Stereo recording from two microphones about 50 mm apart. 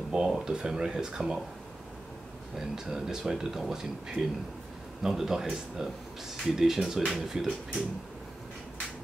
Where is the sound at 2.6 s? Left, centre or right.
Centre.